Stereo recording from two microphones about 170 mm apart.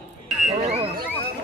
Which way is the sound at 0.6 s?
40° right (ahead or behind).